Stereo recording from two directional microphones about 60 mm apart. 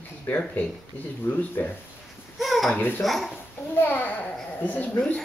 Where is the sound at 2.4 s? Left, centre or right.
Centre.